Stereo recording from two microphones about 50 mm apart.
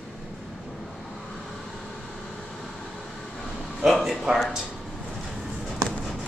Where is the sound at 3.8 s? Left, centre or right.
Centre.